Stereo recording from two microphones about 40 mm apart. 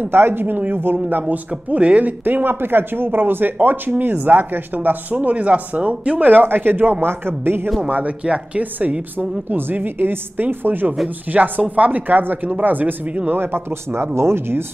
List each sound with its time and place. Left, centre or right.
0.1 s speech: right
1.5 s speech: right
2.2 s speech: right
8.2 s speech: right
9.5 s speech: right
11.3 s a woman's voice: right
13.4 s speech: right